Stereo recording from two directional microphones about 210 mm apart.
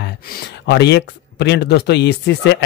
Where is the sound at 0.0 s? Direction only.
50° left (ahead or behind).